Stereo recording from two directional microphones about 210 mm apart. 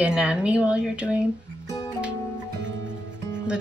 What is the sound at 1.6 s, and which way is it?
Music, 15° left (ahead or behind).